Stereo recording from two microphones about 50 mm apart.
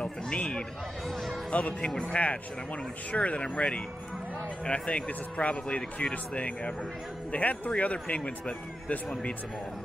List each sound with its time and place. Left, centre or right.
0.0 s a man's voice: left
1.0 s speech: centre
1.5 s speech: left
1.9 s speech: centre
3.1 s speech: left